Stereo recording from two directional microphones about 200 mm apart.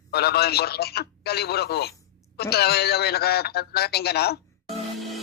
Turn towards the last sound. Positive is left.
turn(degrees=0)  # may be behind; listen again after turning